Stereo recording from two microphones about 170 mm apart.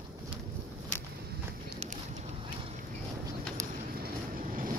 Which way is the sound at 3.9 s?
60° right (ahead or behind).